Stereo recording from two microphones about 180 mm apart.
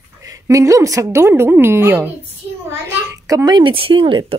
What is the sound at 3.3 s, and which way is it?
Speech, 20° right (ahead or behind).